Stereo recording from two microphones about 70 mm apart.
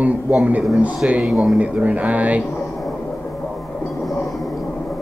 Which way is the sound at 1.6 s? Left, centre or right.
Centre.